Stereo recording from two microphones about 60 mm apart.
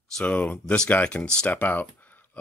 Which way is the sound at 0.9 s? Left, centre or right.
Left.